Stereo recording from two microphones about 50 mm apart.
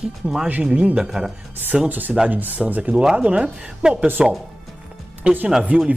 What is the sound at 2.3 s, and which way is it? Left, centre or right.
Speech, right.